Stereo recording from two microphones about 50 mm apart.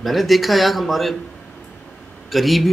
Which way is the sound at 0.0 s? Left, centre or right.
Centre.